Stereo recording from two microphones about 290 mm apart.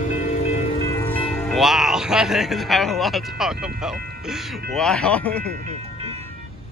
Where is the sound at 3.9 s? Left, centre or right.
Right.